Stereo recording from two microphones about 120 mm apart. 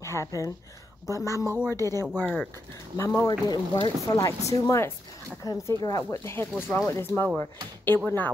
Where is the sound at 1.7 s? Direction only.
30° right (ahead or behind).